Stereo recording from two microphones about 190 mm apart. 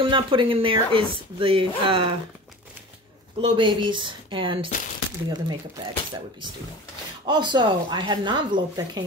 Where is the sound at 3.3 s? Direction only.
25° right (ahead or behind).